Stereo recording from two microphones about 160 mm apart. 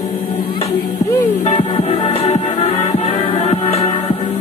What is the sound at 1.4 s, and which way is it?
Music, 45° left (ahead or behind).